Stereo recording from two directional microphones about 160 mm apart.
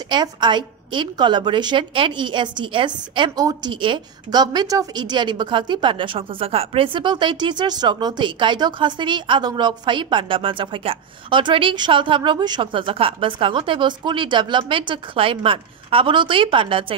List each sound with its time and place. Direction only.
0.1 s a woman's voice: 30° right (ahead or behind)